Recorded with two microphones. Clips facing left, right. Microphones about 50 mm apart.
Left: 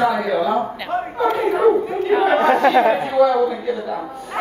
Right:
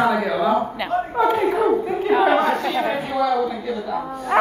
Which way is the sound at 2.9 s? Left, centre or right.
Centre.